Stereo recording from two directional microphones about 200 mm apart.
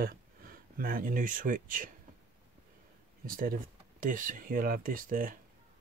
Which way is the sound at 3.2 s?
45° right (ahead or behind).